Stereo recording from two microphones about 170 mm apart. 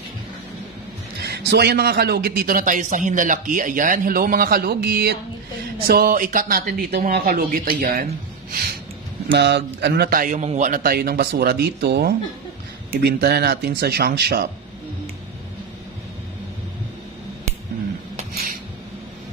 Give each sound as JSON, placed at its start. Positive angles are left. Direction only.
{"t": 1.2, "sound": "a man's voice", "side_deg": -75}
{"t": 9.3, "sound": "a man's voice", "side_deg": -90}